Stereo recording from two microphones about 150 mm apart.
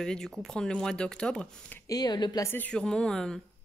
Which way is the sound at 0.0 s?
5° left (ahead or behind).